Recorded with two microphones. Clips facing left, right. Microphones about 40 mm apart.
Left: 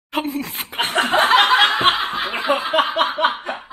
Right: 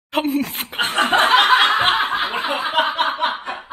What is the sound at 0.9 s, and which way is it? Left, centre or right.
Chuckle, right.